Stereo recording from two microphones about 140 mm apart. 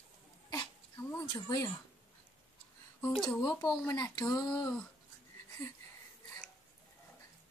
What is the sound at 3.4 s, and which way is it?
Speech, 30° left (ahead or behind).